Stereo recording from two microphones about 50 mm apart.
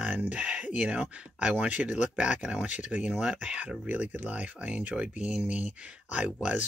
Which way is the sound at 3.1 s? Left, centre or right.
Centre.